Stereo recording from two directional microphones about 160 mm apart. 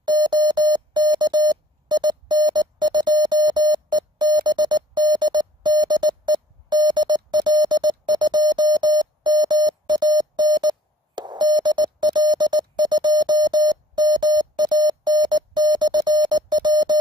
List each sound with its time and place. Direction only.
0.0 s music: 25° right (ahead or behind)